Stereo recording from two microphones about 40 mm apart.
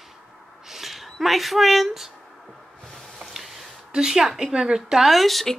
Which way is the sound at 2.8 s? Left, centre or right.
Centre.